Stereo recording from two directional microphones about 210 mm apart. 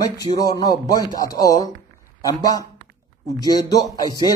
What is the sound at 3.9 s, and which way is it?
Speech, 20° left (ahead or behind).